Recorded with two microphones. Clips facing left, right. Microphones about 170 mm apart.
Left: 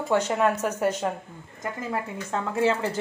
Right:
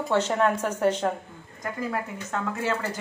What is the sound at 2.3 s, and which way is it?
Speech, 30° left (ahead or behind).